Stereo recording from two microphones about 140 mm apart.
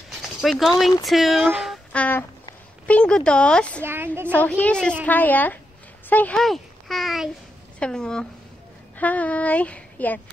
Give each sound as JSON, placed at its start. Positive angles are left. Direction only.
{"t": 0.1, "sound": "speech", "side_deg": 0}
{"t": 2.0, "sound": "speech", "side_deg": 15}
{"t": 3.8, "sound": "a woman's voice", "side_deg": -15}
{"t": 4.3, "sound": "speech", "side_deg": 10}